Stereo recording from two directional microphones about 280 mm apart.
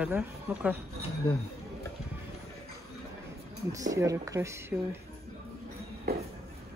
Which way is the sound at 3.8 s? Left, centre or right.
Centre.